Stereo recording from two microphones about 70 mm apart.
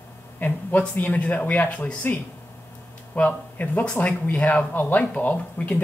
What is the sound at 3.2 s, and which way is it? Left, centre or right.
A man's voice, left.